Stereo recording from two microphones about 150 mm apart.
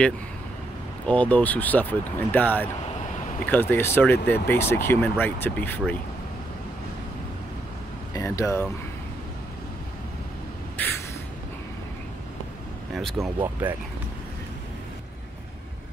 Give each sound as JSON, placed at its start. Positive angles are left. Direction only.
{"t": 1.0, "sound": "speech", "side_deg": 10}
{"t": 8.1, "sound": "speech", "side_deg": 20}
{"t": 10.8, "sound": "a sound", "side_deg": 10}
{"t": 12.9, "sound": "speech", "side_deg": 0}
{"t": 13.4, "sound": "speech", "side_deg": -10}